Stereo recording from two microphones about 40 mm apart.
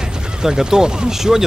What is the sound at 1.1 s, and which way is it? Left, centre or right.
Speech, centre.